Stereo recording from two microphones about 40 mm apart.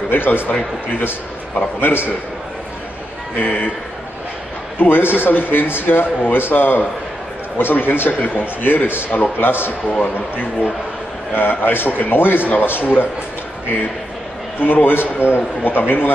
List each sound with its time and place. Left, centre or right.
0.1 s a man's voice: left
1.8 s speech: left
3.3 s speech: left
4.7 s speech: left
8.1 s speech: left
11.3 s speech: left
14.6 s speech: left